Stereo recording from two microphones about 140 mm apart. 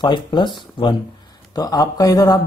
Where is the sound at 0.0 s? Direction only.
35° left (ahead or behind).